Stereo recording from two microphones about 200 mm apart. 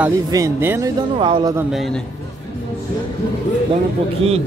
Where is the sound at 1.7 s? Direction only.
Centre (ahead or behind).